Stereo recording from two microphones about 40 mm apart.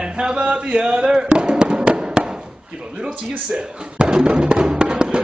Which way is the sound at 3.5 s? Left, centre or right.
Right.